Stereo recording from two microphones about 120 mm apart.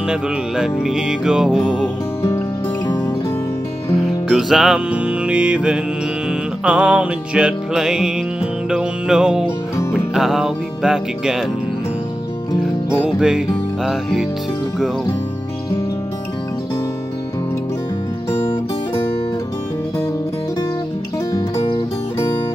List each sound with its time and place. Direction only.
0.1 s music: 5° right (ahead or behind)
3.9 s music: centre (ahead or behind)
13.0 s music: 5° right (ahead or behind)
21.3 s music: 30° left (ahead or behind)